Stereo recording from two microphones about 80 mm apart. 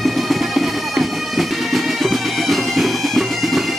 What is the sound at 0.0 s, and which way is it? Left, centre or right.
Bagpipes, centre.